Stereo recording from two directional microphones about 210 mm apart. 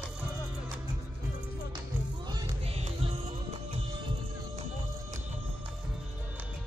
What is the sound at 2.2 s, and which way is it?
Music, 25° right (ahead or behind).